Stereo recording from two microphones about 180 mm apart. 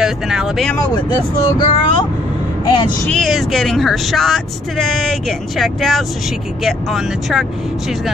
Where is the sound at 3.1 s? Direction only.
Centre (ahead or behind).